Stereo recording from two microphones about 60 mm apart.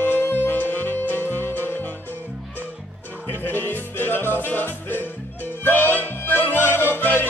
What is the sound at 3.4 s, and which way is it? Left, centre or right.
Music, left.